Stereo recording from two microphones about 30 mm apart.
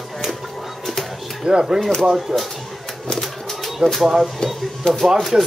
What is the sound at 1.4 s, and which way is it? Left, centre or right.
Speech, right.